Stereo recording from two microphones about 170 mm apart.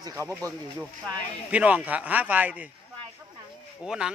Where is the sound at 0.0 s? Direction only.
15° right (ahead or behind).